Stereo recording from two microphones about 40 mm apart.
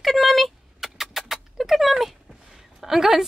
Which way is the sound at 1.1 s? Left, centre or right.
Centre.